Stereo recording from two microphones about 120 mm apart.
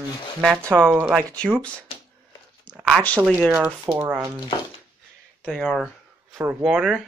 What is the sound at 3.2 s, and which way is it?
Speech, 10° right (ahead or behind).